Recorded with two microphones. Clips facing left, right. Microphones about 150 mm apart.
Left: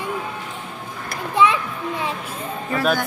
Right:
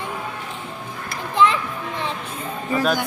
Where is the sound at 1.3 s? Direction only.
10° left (ahead or behind).